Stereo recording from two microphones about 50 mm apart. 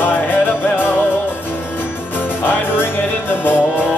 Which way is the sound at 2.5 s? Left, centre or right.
Left.